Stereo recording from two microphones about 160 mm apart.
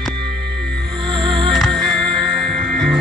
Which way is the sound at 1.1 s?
30° right (ahead or behind).